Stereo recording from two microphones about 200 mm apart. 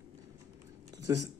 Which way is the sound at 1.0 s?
15° right (ahead or behind).